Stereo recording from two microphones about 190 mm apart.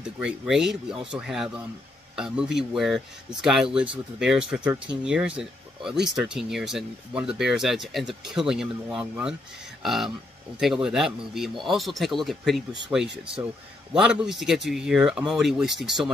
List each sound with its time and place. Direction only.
0.2 s speech: 5° right (ahead or behind)